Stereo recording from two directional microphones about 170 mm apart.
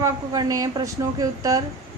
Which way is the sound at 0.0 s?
20° right (ahead or behind).